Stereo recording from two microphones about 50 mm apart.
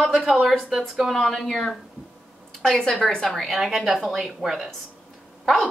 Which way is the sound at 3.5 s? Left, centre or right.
Centre.